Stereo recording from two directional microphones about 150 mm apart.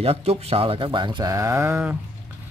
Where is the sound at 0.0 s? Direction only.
40° right (ahead or behind); by 1.8 s 20° right (ahead or behind).